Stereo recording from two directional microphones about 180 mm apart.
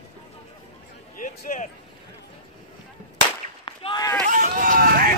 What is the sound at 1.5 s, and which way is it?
Speech, 45° left (ahead or behind).